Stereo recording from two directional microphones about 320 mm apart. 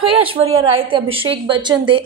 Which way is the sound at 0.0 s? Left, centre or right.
Centre.